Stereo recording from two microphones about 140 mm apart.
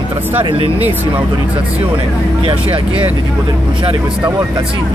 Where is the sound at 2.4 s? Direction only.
40° right (ahead or behind).